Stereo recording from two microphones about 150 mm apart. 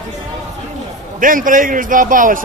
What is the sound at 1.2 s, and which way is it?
A man's voice, 65° right (ahead or behind).